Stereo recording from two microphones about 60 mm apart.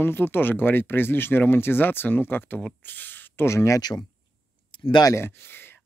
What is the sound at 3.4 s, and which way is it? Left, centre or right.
Speech, left.